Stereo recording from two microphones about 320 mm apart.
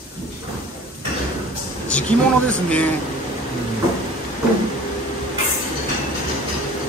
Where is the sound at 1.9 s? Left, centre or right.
Centre.